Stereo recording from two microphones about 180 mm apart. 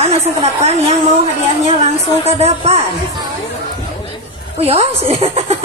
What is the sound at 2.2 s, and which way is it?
A woman's voice, 35° right (ahead or behind).